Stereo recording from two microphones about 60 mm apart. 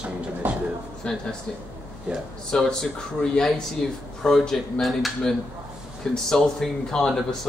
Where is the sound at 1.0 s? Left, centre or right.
Centre.